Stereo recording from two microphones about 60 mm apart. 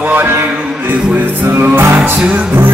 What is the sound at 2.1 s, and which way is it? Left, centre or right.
Music, centre.